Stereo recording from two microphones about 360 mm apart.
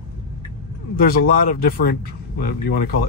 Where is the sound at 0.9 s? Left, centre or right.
Left.